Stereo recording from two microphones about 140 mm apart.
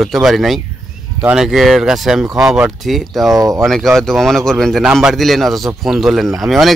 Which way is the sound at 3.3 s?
25° right (ahead or behind).